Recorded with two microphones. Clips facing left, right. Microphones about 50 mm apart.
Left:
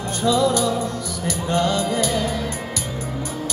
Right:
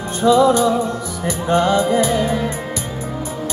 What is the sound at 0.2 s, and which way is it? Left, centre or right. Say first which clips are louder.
Music: right 6 dB; right.